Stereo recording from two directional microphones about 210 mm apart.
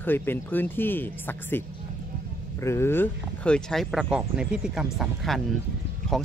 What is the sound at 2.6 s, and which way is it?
Speech, 10° left (ahead or behind).